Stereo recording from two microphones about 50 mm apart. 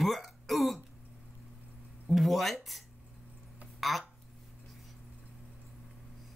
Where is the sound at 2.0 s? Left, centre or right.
Centre.